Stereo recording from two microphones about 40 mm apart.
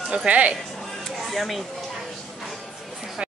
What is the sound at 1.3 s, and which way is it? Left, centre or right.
Speech, centre.